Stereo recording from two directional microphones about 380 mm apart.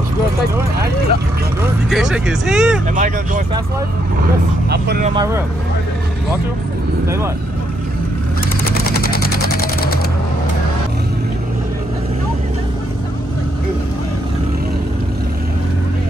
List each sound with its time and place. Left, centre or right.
1.9 s speech: centre
2.9 s speech: centre
4.6 s speech: right
5.1 s speech: centre
8.9 s sewing machine: left